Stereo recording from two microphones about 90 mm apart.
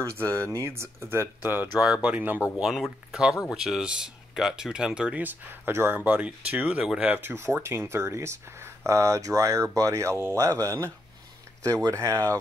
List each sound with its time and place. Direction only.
0.0 s speech: 30° right (ahead or behind)
1.8 s speech: 10° right (ahead or behind)
2.6 s speech: 5° right (ahead or behind); by 5.9 s 25° right (ahead or behind)
5.9 s speech: 15° right (ahead or behind)
7.2 s speech: 25° right (ahead or behind)